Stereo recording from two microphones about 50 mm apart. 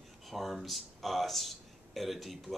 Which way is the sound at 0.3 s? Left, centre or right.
Centre.